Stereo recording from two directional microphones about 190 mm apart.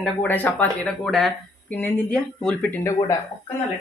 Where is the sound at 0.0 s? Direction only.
10° left (ahead or behind).